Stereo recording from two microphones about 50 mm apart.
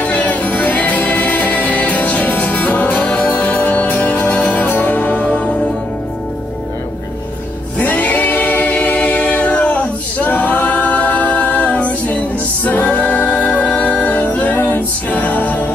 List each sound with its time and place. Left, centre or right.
0.0 s music: left
7.8 s a capella: left
14.0 s music: left